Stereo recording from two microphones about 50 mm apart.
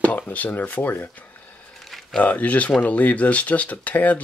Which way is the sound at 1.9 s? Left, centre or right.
Centre.